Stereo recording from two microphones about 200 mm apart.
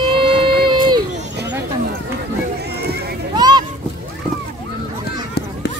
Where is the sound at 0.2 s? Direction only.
25° right (ahead or behind).